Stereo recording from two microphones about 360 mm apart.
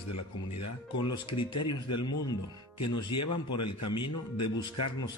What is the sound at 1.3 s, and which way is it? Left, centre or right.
Speech, centre.